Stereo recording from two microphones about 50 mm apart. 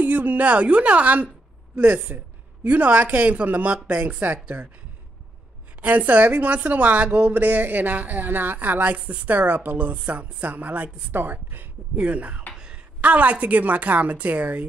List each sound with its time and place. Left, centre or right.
0.0 s speech: right
5.8 s speech: right
12.0 s speech: right
12.5 s a sound: centre
13.0 s speech: right